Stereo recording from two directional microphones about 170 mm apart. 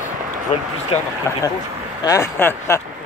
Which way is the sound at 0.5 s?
40° left (ahead or behind).